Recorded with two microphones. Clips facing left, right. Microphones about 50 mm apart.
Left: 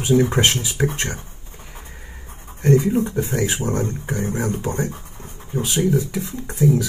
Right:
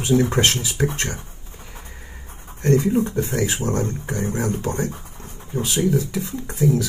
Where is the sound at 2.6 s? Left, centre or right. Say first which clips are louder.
Left 1 dB; centre.